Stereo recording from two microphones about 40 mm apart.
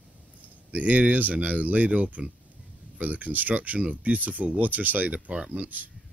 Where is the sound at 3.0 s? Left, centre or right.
Right.